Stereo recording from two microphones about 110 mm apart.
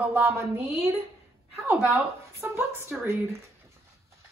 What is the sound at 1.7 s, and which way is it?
Speech, 10° right (ahead or behind).